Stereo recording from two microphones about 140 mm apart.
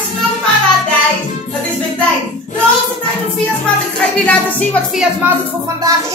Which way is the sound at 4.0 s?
10° left (ahead or behind).